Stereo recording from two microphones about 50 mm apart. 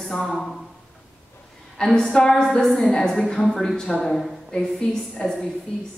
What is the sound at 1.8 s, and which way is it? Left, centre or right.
A woman's voice, centre.